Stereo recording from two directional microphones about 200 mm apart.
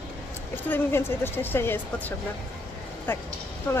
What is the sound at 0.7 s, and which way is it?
Speech, 10° left (ahead or behind).